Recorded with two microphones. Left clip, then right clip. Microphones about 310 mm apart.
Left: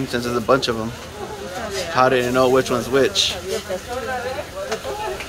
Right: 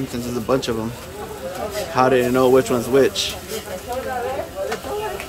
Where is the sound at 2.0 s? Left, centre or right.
Centre.